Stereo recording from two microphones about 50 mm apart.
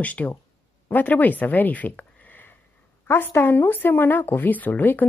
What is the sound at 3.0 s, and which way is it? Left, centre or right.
Speech, left.